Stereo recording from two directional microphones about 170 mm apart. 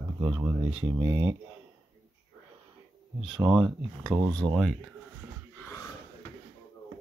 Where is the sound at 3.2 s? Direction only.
Centre (ahead or behind).